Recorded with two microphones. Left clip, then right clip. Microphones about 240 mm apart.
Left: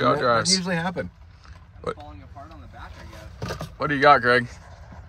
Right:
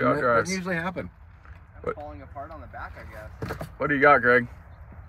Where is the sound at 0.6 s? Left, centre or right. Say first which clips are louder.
Left 2 dB; left.